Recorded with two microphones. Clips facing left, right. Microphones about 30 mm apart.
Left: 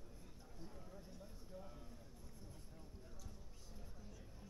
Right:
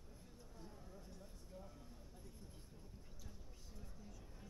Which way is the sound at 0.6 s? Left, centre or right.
Centre.